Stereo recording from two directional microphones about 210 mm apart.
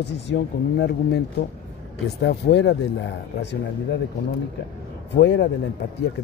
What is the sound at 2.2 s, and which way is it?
Speech, 50° left (ahead or behind).